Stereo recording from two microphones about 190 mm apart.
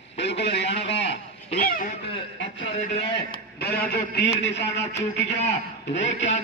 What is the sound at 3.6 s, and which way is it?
A man's voice, 55° left (ahead or behind).